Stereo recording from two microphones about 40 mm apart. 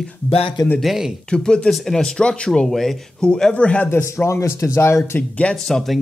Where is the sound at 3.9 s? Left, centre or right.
Left.